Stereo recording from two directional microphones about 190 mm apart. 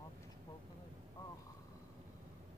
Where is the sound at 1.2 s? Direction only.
20° left (ahead or behind).